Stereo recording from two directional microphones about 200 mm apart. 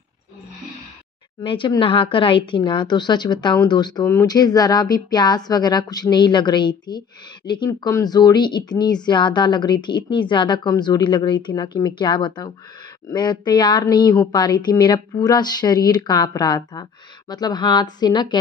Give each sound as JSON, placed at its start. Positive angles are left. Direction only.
{"t": 1.4, "sound": "speech", "side_deg": 25}